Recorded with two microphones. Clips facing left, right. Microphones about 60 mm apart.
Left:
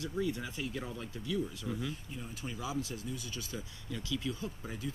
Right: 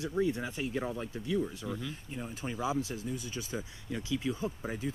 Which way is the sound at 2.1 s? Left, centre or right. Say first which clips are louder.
Right 4 dB; right.